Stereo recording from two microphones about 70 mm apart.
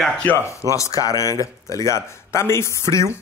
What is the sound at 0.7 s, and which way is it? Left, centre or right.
Speech, left.